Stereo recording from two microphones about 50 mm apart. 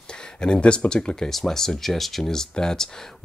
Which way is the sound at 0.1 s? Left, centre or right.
Centre.